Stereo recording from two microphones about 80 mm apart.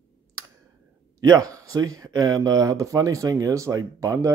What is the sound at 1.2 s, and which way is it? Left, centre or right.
Speech, right.